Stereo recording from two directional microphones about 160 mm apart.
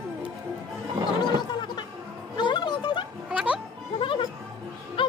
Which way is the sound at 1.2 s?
25° left (ahead or behind).